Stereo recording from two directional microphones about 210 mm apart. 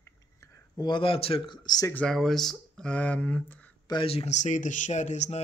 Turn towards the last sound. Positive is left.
turn(degrees=35)  # may be behind; listen again after turning